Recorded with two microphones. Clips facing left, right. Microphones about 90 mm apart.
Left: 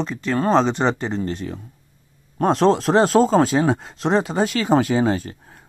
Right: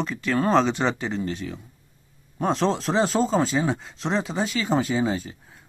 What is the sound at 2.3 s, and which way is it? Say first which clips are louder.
Speech: left 6 dB; 60° left (ahead or behind).